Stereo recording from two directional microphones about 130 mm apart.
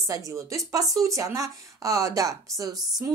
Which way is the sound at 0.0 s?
25° right (ahead or behind).